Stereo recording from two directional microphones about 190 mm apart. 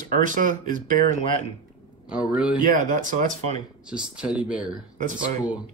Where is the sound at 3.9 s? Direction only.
5° right (ahead or behind).